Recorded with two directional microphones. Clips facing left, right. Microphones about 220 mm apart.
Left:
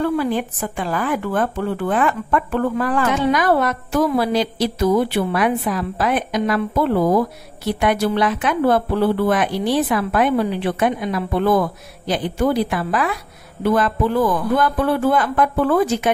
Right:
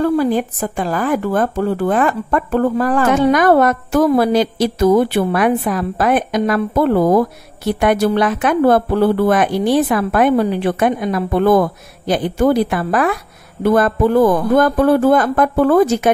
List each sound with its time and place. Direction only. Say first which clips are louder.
0.0 s speech: right 4 dB; 40° right (ahead or behind)